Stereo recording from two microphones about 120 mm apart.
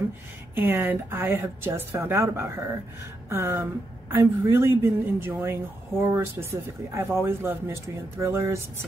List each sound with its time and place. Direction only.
0.6 s speech: 15° right (ahead or behind)